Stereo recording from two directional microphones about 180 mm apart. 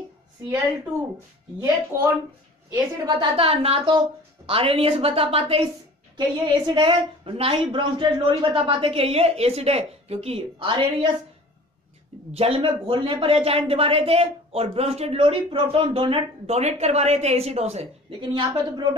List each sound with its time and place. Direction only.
2.7 s a woman's voice: 30° right (ahead or behind)
12.3 s speech: 35° right (ahead or behind)